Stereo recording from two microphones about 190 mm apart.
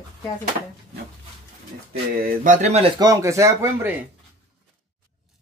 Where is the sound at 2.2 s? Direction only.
40° right (ahead or behind); by 3.9 s 15° right (ahead or behind).